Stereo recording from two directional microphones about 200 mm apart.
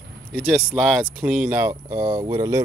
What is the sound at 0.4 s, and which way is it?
Speech, 5° left (ahead or behind).